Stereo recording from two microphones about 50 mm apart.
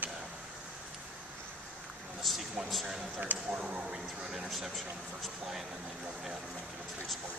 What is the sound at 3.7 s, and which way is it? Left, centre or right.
Speech, centre.